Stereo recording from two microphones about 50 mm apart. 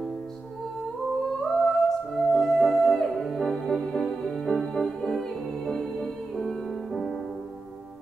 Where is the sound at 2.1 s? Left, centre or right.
Centre.